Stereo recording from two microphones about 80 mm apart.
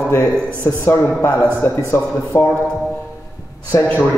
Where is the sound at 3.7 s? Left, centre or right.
Left.